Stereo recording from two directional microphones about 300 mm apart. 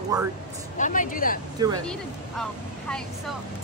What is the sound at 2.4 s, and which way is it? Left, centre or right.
Speech, centre.